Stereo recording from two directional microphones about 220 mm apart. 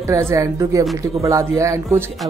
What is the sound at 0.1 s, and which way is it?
Speech, 15° right (ahead or behind).